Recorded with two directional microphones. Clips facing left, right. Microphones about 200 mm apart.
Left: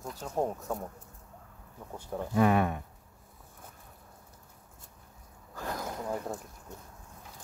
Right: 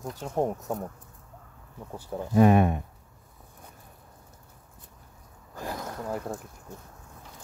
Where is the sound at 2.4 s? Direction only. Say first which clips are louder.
Right 6 dB; 20° right (ahead or behind).